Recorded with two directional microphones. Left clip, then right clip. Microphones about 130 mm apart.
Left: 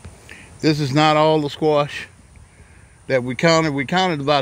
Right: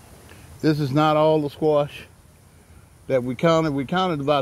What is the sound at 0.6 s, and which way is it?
Speech, 15° left (ahead or behind).